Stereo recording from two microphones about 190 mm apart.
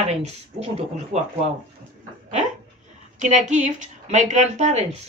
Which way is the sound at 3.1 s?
40° right (ahead or behind).